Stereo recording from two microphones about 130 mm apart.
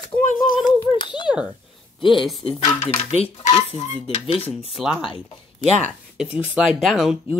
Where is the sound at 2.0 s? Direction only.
Centre (ahead or behind).